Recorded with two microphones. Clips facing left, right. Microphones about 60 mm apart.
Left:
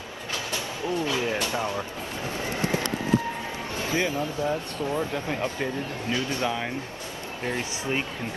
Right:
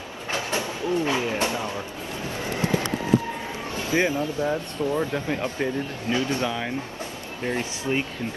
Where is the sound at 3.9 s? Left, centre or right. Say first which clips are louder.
Right 4 dB; right.